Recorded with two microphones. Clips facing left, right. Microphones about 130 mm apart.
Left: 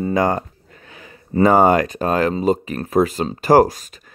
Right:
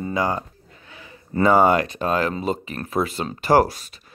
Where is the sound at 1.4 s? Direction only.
40° left (ahead or behind).